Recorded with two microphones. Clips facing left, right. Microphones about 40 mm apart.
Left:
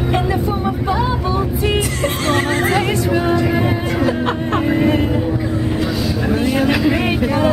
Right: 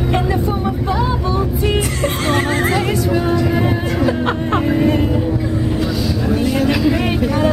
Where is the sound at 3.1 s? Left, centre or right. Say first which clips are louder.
Left 1 dB; centre.